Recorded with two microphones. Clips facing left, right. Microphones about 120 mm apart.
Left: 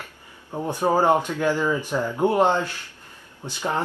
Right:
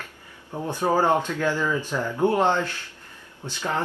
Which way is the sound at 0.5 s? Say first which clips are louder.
Left 2 dB; 15° left (ahead or behind).